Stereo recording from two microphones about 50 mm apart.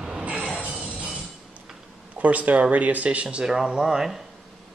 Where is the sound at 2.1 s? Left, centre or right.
Right.